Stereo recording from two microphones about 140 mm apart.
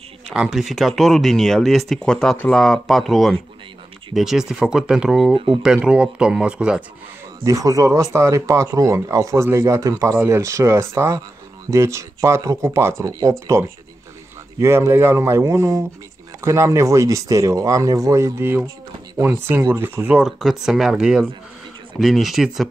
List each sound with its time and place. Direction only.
0.3 s speech: 5° right (ahead or behind)
5.3 s speech: 35° right (ahead or behind)
5.9 s speech: 5° right (ahead or behind)
7.4 s speech: 25° right (ahead or behind); by 22.7 s centre (ahead or behind)